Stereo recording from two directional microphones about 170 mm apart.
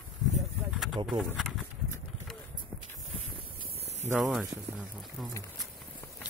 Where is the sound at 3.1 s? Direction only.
35° right (ahead or behind).